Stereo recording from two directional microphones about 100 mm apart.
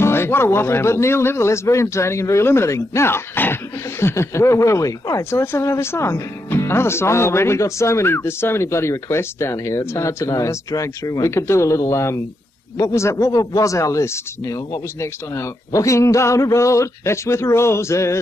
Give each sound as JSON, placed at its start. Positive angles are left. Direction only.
{"t": 0.0, "sound": "speech", "side_deg": 25}